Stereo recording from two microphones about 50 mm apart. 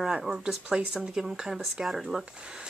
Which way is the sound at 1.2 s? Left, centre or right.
Centre.